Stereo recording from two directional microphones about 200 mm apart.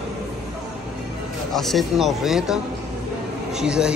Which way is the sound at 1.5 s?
Centre (ahead or behind).